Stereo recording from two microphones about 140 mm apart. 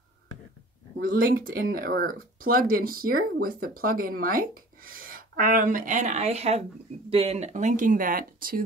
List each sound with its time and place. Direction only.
1.0 s speech: 80° right